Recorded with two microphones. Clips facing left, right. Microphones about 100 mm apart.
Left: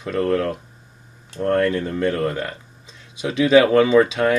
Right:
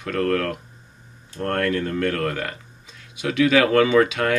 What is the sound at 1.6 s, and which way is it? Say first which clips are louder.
Speech: left 2 dB; 25° left (ahead or behind).